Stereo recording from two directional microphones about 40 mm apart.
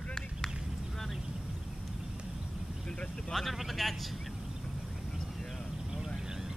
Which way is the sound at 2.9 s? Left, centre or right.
Left.